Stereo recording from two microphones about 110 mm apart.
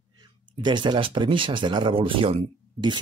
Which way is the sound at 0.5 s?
45° right (ahead or behind).